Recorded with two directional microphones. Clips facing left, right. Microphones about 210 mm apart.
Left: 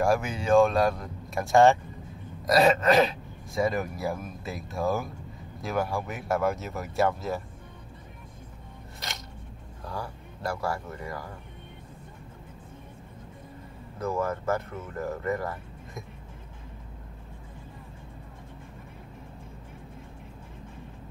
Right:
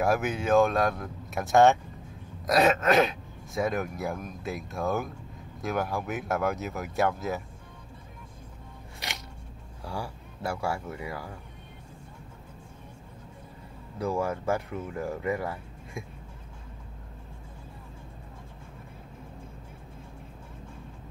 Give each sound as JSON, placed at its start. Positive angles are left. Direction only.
{"t": 0.0, "sound": "speech", "side_deg": 0}
{"t": 9.8, "sound": "speech", "side_deg": -10}
{"t": 13.9, "sound": "speech", "side_deg": -10}